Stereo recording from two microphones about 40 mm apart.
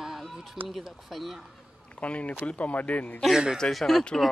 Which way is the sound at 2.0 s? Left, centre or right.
Left.